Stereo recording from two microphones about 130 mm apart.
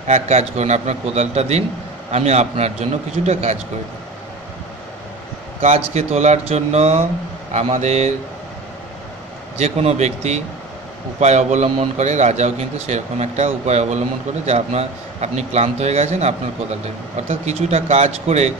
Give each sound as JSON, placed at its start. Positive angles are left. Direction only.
{"t": 0.0, "sound": "a man's voice", "side_deg": -60}
{"t": 5.6, "sound": "a man's voice", "side_deg": -55}
{"t": 9.6, "sound": "a man's voice", "side_deg": -55}